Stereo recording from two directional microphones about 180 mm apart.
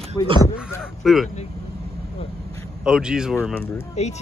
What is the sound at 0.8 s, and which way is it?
Speech, centre (ahead or behind).